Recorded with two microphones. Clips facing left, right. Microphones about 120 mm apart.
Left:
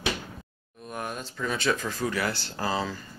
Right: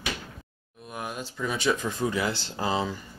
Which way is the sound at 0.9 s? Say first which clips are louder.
Even; 5° right (ahead or behind).